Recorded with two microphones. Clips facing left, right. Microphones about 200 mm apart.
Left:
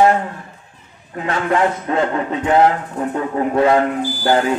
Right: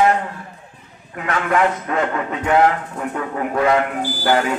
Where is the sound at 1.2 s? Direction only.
30° left (ahead or behind).